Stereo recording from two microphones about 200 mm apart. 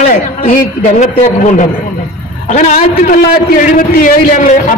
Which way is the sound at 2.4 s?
35° left (ahead or behind).